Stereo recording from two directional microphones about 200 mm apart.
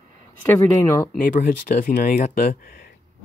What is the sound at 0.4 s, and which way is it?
Speech, 10° left (ahead or behind).